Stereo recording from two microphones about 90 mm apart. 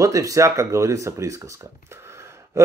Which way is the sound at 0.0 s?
40° right (ahead or behind).